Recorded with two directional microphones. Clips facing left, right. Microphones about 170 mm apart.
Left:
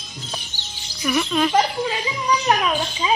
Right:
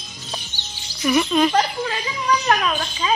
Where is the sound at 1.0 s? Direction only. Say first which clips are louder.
Right 3 dB; 5° right (ahead or behind).